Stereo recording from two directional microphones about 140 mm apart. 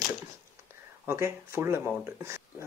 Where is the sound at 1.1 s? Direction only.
20° right (ahead or behind).